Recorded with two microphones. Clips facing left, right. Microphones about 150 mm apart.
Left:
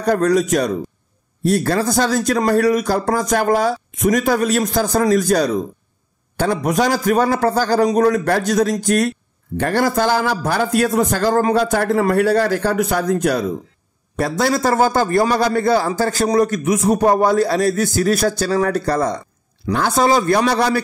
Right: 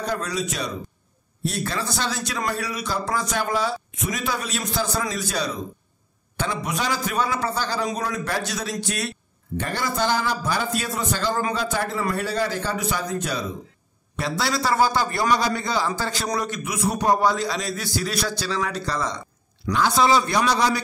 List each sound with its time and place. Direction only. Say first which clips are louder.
0.0 s a man's voice: left 11 dB; 50° left (ahead or behind)